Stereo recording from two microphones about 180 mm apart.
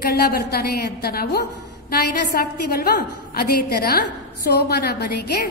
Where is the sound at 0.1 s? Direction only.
60° left (ahead or behind).